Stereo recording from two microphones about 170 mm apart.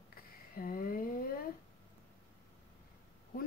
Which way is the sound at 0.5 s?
55° left (ahead or behind).